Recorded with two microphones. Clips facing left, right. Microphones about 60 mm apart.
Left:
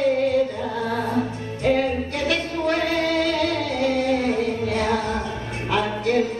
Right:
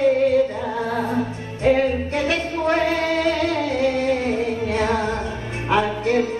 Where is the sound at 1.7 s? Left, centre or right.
Centre.